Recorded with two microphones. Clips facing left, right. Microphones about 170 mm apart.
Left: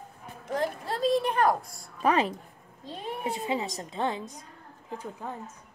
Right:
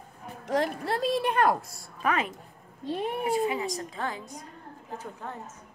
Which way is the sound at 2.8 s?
60° right (ahead or behind).